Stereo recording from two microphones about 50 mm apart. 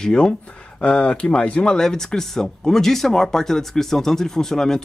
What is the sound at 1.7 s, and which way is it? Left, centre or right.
Speech, centre.